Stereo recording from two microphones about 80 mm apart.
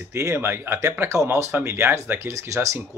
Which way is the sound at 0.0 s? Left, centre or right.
Right.